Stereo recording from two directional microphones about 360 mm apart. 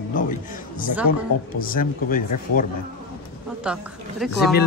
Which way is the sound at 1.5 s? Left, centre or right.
Left.